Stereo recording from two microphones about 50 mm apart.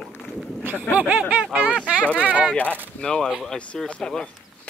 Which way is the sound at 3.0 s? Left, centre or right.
Centre.